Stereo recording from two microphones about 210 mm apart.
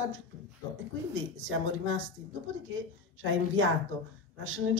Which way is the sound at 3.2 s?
70° right (ahead or behind).